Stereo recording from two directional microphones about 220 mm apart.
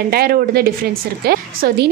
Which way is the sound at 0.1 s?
45° right (ahead or behind).